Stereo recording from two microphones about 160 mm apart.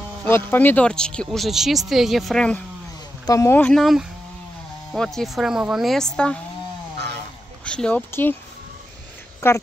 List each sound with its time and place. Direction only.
0.2 s speech: 10° left (ahead or behind)
3.3 s speech: 15° left (ahead or behind); by 6.0 s centre (ahead or behind)
7.6 s speech: 5° left (ahead or behind)
9.4 s a woman's voice: 15° left (ahead or behind)